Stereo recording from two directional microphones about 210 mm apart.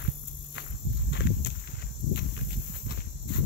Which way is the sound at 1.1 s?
55° left (ahead or behind).